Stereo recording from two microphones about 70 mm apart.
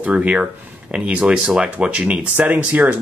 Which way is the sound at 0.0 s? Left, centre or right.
Centre.